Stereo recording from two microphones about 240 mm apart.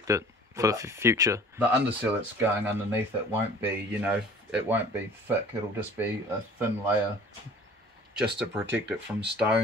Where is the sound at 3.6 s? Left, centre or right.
Centre.